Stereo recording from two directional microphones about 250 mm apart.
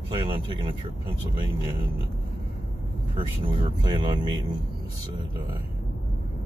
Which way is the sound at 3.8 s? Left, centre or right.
Centre.